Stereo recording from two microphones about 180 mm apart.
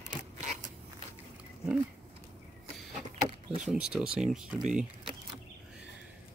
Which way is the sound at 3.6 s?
5° right (ahead or behind).